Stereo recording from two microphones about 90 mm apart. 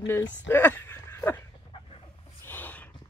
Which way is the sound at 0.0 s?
25° left (ahead or behind).